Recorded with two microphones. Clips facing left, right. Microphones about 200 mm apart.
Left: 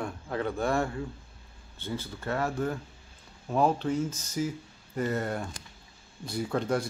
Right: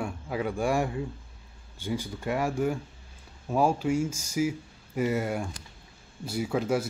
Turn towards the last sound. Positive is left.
turn(degrees=-5)  # may be behind; listen again after turning